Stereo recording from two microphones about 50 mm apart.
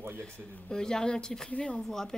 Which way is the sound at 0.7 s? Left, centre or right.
Centre.